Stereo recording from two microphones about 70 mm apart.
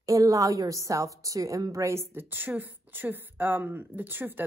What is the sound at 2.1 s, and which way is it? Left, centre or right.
A woman's voice, right.